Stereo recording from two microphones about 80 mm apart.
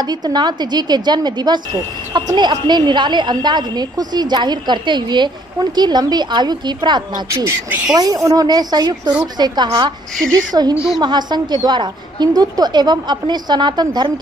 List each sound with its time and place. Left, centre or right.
0.0 s a woman's voice: right
7.9 s a woman's voice: right
10.5 s a woman's voice: right
11.0 s a woman's voice: right